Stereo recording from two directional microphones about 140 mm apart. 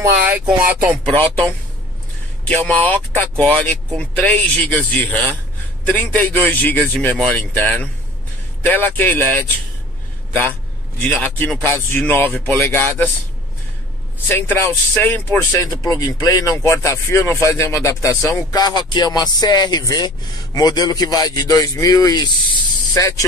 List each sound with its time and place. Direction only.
0.0 s speech: 15° right (ahead or behind)
2.4 s speech: 10° left (ahead or behind)
11.0 s speech: 10° left (ahead or behind)
14.2 s speech: 15° left (ahead or behind)